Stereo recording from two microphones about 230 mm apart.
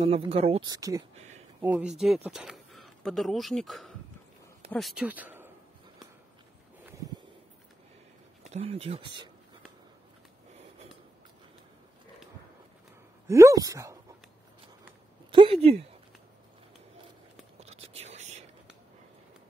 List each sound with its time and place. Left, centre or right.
0.0 s speech: right
1.1 s a sound: right
1.6 s speech: centre
8.5 s speech: right
13.3 s speech: centre
15.3 s speech: right
17.6 s whispering: right